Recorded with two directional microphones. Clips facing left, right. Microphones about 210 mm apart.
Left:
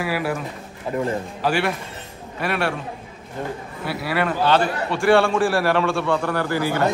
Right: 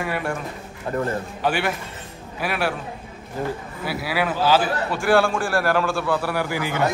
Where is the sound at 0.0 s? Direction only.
5° left (ahead or behind).